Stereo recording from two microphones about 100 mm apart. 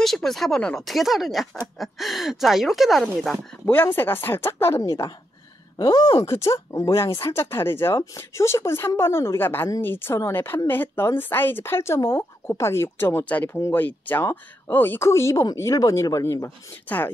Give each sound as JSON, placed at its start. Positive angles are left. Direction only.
{"t": 0.0, "sound": "speech", "side_deg": 0}
{"t": 3.6, "sound": "a woman's voice", "side_deg": 20}
{"t": 6.2, "sound": "a woman's voice", "side_deg": 30}
{"t": 13.6, "sound": "a woman's voice", "side_deg": 30}
{"t": 13.8, "sound": "a woman's voice", "side_deg": 20}
{"t": 16.9, "sound": "speech", "side_deg": 20}